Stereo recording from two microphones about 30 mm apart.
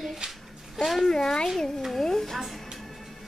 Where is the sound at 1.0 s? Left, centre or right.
Centre.